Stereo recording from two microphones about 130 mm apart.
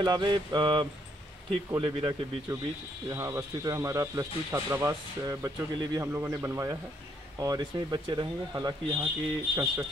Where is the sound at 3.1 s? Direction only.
25° right (ahead or behind).